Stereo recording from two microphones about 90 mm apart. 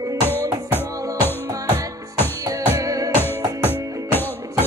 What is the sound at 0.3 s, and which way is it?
Music, 25° left (ahead or behind).